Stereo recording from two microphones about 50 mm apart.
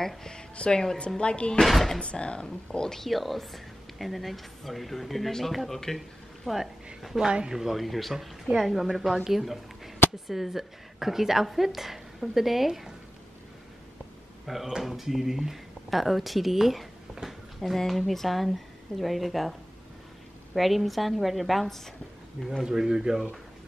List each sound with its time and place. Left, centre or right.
0.0 s speech: centre
1.6 s speech: centre
2.0 s speech: centre
5.9 s a sound: centre
7.0 s a woman's voice: centre
7.2 s speech: centre
14.5 s speech: centre
17.6 s speech: centre
20.5 s speech: centre
22.6 s speech: centre